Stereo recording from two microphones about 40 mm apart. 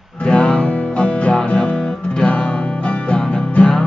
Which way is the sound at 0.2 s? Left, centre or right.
Left.